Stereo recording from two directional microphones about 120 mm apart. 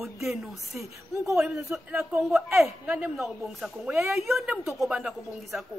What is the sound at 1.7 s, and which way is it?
Speech, 20° right (ahead or behind).